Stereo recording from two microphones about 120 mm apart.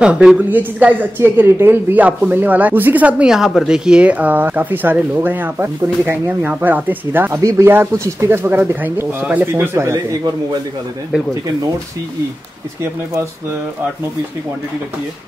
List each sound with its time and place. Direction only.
0.0 s a woman's voice: 5° right (ahead or behind)